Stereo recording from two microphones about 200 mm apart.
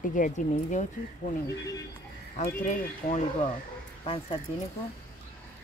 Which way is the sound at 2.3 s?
40° left (ahead or behind).